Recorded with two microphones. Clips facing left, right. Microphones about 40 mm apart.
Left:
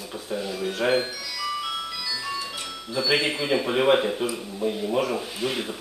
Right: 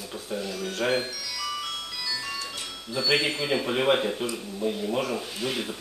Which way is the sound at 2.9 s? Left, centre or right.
Centre.